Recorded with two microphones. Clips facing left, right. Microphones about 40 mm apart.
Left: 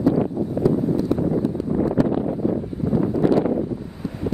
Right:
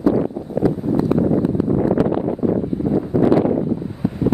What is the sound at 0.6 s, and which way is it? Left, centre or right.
Wind noise, right.